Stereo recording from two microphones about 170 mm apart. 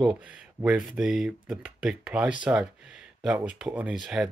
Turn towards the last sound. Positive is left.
turn(degrees=0)  # may be behind; listen again after turning